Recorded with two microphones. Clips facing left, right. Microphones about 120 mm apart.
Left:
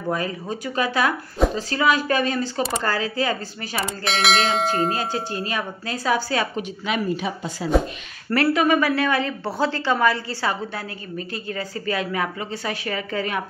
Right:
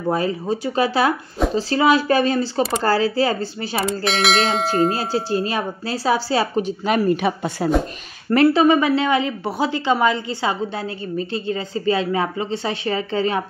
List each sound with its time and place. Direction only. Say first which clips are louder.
0.1 s a woman's voice: right 5 dB; 30° right (ahead or behind)
3.8 s bell: right 3 dB; centre (ahead or behind)
4.9 s a woman's voice: right 5 dB; 30° right (ahead or behind)
7.1 s speech: right 6 dB; 60° right (ahead or behind)
8.3 s a woman's voice: right 5 dB; 25° right (ahead or behind)